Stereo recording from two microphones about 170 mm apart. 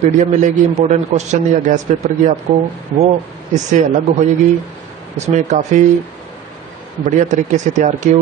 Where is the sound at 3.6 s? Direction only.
45° right (ahead or behind).